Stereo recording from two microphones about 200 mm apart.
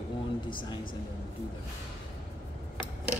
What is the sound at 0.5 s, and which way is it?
Speech, 25° left (ahead or behind).